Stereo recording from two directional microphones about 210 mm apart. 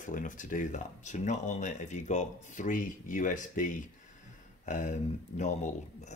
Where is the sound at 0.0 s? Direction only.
40° left (ahead or behind).